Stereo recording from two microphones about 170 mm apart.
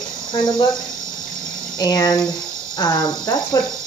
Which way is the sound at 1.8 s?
20° left (ahead or behind).